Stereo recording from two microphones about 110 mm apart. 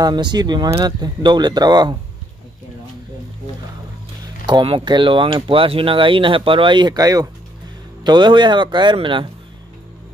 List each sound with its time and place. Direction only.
0.0 s speech: 40° right (ahead or behind)
4.2 s speech: 45° right (ahead or behind)
8.0 s speech: 45° right (ahead or behind)